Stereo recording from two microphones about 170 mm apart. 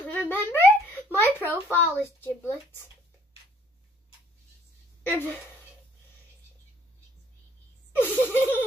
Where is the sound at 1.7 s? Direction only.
10° left (ahead or behind).